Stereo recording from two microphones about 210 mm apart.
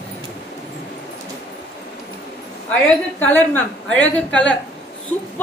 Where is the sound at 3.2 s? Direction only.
10° left (ahead or behind).